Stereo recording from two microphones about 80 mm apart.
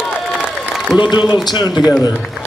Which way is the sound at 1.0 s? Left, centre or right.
Left.